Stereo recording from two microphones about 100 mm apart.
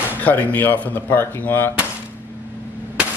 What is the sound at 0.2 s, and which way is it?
Speech, 15° left (ahead or behind).